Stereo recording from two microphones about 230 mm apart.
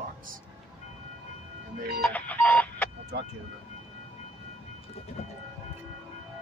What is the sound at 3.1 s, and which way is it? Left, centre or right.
Speech, right.